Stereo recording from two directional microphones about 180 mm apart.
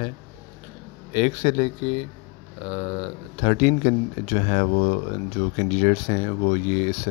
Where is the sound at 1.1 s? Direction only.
40° left (ahead or behind).